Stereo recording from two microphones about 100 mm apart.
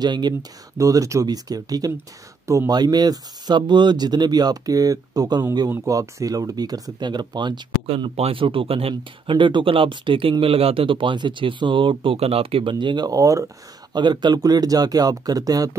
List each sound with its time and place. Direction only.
0.0 s speech: 45° right (ahead or behind)
0.7 s speech: 35° right (ahead or behind)
7.8 s speech: 70° right (ahead or behind)
10.4 s speech: 70° right (ahead or behind); by 13.5 s 35° right (ahead or behind)
13.9 s speech: 45° right (ahead or behind)